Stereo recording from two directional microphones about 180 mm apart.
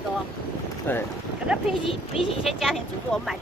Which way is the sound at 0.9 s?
10° left (ahead or behind).